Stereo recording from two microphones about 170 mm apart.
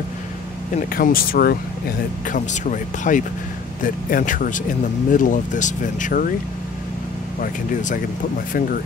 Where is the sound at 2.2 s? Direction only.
50° left (ahead or behind).